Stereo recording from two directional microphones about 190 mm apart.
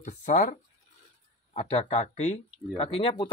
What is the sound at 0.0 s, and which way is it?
Speech, 40° left (ahead or behind).